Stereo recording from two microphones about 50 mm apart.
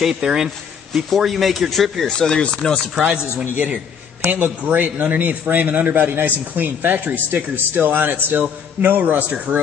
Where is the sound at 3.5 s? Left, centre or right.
Right.